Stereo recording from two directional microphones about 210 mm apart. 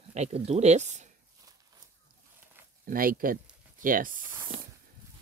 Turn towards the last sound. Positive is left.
turn(degrees=-40)  # may be behind; listen again after turning